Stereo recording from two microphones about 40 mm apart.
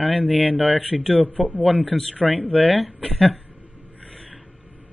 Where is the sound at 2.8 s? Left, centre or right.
Centre.